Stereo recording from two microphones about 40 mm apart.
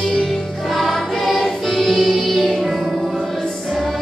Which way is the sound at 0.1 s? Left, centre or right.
Centre.